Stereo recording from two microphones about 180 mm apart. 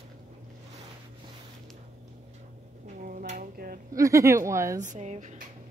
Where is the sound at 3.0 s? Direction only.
50° right (ahead or behind).